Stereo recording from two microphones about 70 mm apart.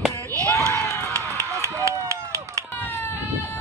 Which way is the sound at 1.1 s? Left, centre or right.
Right.